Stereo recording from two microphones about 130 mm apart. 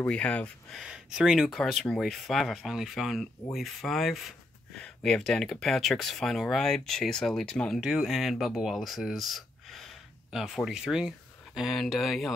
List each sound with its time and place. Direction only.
0.0 s speech: 10° left (ahead or behind)
0.7 s speech: 5° right (ahead or behind)